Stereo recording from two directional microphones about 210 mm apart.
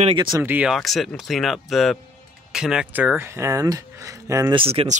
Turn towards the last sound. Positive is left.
turn(degrees=-25)  # may be behind; listen again after turning